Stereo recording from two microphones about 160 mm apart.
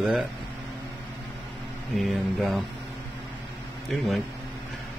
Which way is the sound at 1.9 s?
Centre (ahead or behind).